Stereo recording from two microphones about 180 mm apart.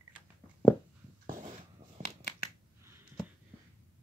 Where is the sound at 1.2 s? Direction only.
50° right (ahead or behind).